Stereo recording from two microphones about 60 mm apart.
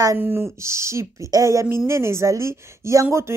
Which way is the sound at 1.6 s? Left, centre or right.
Right.